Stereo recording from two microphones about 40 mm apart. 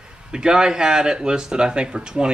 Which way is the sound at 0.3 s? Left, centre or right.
Centre.